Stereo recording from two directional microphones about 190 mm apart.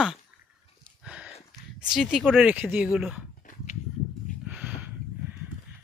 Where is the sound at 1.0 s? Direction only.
5° right (ahead or behind).